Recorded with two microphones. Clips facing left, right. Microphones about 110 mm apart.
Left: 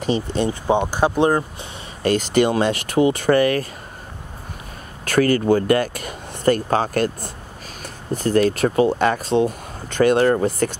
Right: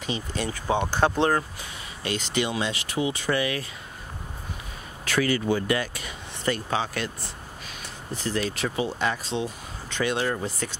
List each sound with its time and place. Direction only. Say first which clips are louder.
0.3 s speech: left 5 dB; 25° left (ahead or behind)
2.0 s speech: left 10 dB; 50° left (ahead or behind)
5.0 s speech: left 7 dB; 50° left (ahead or behind)